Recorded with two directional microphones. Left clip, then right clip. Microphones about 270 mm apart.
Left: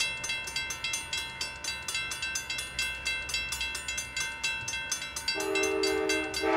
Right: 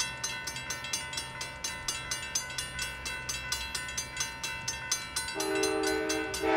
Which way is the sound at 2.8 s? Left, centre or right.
Left.